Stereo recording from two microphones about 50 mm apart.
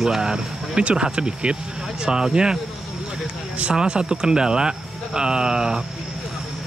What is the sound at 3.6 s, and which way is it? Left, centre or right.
Speech, centre.